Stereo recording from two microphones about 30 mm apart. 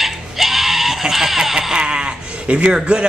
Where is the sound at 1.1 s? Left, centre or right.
Centre.